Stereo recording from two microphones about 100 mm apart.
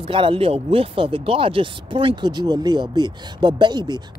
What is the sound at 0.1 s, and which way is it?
Speech, 60° right (ahead or behind).